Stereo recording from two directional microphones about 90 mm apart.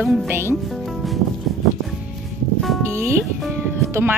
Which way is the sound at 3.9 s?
25° right (ahead or behind).